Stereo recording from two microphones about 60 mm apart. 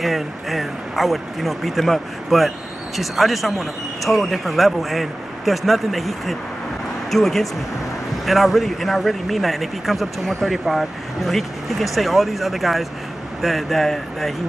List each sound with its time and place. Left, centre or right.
0.0 s speech: centre